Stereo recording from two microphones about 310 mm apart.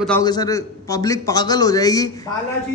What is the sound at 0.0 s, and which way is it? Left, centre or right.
A man's voice, centre.